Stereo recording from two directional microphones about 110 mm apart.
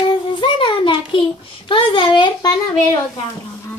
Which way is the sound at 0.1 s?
50° left (ahead or behind).